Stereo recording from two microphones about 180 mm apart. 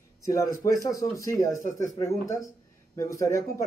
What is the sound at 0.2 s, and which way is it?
Speech, 15° left (ahead or behind).